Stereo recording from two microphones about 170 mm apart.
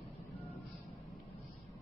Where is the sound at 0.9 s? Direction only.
Centre (ahead or behind).